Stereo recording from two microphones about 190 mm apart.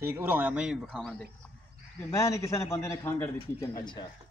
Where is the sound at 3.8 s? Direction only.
25° left (ahead or behind).